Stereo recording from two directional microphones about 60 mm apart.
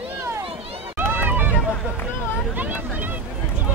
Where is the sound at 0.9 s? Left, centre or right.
Right.